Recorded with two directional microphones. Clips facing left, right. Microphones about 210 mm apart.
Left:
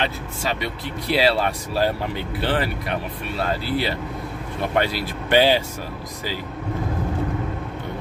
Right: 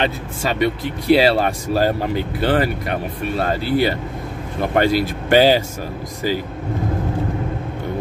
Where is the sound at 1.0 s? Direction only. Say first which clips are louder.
Right 6 dB; 50° right (ahead or behind).